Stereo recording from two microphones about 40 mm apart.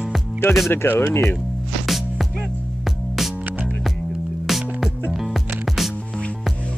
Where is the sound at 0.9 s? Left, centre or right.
Left.